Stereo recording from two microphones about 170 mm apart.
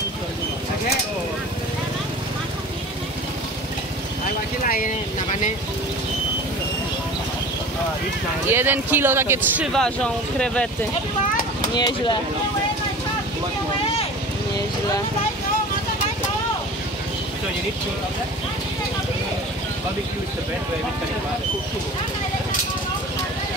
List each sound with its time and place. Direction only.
8.5 s speech: 10° right (ahead or behind)
9.7 s speech: 5° left (ahead or behind)
11.7 s speech: 25° left (ahead or behind)